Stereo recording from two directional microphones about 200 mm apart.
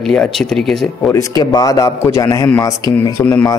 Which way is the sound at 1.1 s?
20° left (ahead or behind).